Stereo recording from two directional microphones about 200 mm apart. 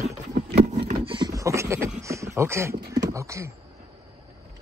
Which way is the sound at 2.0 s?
15° right (ahead or behind).